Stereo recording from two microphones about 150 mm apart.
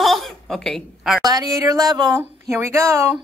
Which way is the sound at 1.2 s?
25° right (ahead or behind).